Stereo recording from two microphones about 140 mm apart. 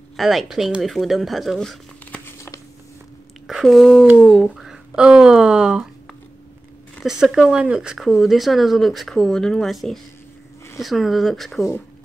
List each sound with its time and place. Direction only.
0.2 s speech: centre (ahead or behind)
2.0 s a sound: 15° left (ahead or behind)
3.4 s speech: centre (ahead or behind)
7.0 s speech: 5° right (ahead or behind)